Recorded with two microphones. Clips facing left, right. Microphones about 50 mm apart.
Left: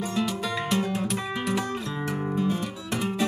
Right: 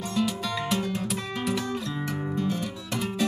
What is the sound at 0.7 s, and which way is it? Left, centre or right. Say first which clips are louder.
Music: left 2 dB; centre.